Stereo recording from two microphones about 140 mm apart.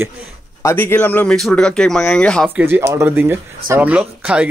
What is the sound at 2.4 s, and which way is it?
Speech, 15° right (ahead or behind).